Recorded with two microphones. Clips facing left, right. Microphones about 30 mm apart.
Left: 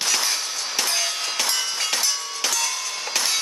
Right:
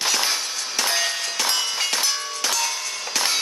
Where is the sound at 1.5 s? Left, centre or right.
Centre.